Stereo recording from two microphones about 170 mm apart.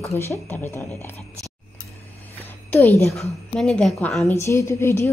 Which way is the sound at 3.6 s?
5° left (ahead or behind).